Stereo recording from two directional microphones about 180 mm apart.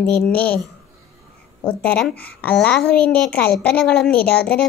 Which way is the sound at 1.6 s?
5° left (ahead or behind).